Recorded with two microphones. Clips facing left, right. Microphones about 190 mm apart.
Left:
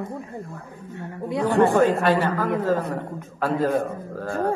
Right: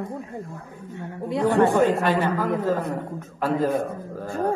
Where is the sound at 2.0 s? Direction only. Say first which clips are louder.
Left 1 dB; 15° right (ahead or behind).